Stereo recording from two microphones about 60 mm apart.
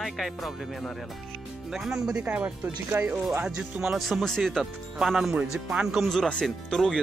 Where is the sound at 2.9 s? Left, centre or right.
Right.